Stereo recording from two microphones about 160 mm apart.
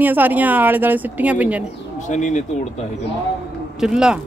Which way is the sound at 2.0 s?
50° left (ahead or behind).